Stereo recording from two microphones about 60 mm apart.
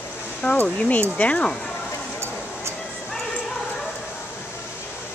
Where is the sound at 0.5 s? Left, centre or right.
Left.